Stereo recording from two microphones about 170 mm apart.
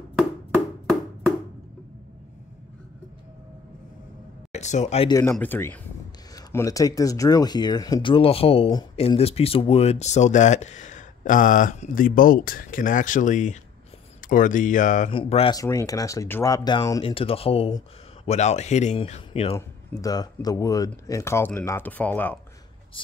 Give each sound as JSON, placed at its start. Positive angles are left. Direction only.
{"t": 4.5, "sound": "speech", "side_deg": 45}
{"t": 5.3, "sound": "speech", "side_deg": 10}
{"t": 15.0, "sound": "speech", "side_deg": 35}
{"t": 15.5, "sound": "speech", "side_deg": 20}
{"t": 17.0, "sound": "speech", "side_deg": 35}
{"t": 19.5, "sound": "speech", "side_deg": 20}